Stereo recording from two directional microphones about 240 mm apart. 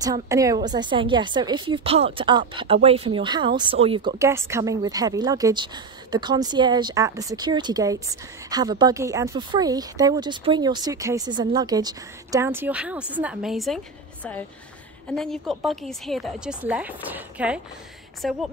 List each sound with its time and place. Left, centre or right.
0.0 s a woman's voice: centre
15.1 s a woman's voice: centre